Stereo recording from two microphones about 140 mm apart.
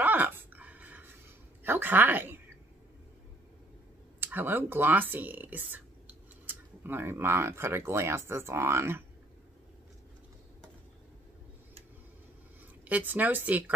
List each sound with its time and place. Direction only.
0.0 s a sound: 15° right (ahead or behind)
1.6 s speech: 15° right (ahead or behind)
4.2 s speech: 15° right (ahead or behind)
12.8 s speech: 10° right (ahead or behind)